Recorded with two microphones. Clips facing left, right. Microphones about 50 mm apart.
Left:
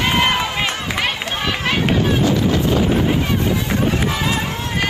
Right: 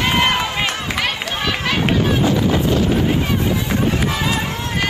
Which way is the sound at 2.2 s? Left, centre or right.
Centre.